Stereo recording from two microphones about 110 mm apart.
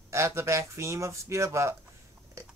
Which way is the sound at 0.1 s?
25° right (ahead or behind).